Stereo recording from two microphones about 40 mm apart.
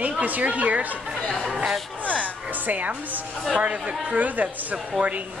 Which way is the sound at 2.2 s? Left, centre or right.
Right.